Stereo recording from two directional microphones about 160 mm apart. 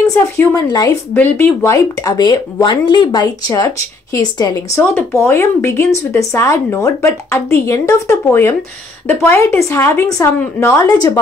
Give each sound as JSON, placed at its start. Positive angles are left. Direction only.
{"t": 0.0, "sound": "speech", "side_deg": 20}
{"t": 1.1, "sound": "speech", "side_deg": 10}